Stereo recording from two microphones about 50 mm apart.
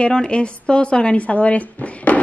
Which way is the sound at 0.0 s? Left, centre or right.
Centre.